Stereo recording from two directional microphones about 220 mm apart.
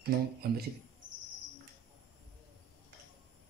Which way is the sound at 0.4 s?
45° right (ahead or behind).